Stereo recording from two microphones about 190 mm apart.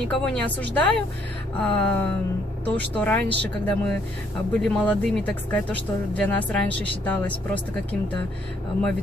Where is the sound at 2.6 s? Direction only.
5° left (ahead or behind).